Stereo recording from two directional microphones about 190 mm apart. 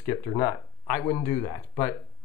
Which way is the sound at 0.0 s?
15° left (ahead or behind).